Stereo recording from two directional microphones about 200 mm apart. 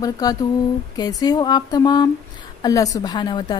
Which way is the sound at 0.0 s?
20° left (ahead or behind).